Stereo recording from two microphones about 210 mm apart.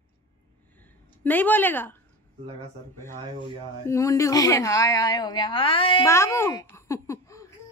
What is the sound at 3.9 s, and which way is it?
A woman's voice, 15° left (ahead or behind).